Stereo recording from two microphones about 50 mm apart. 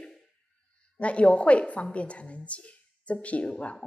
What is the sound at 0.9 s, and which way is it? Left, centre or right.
A woman's voice, left.